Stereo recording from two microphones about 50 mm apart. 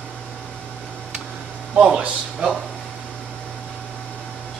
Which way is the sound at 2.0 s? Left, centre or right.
Right.